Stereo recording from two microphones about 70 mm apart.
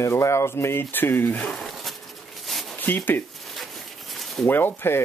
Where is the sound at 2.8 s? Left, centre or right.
Left.